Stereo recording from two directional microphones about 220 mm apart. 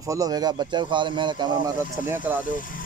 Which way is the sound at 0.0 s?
15° right (ahead or behind).